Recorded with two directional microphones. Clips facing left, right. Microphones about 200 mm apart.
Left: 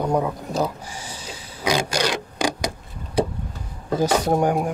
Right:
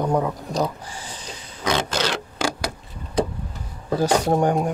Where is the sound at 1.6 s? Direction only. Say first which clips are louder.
Left 1 dB; 10° left (ahead or behind).